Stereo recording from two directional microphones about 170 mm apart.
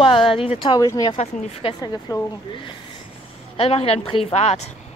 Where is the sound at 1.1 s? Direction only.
35° left (ahead or behind).